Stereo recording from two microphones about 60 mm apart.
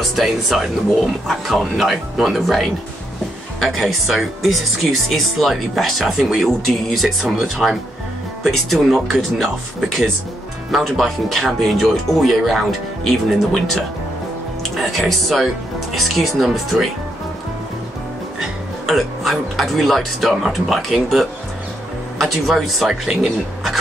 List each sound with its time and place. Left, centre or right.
0.1 s speech: centre
18.9 s speech: centre